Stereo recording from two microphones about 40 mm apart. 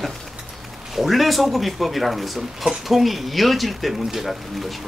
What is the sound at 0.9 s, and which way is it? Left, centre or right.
Speech, centre.